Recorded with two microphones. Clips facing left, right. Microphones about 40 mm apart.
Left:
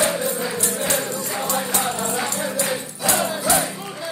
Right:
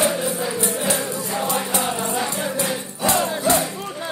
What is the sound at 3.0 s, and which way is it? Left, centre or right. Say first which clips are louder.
Music: right 3 dB; right.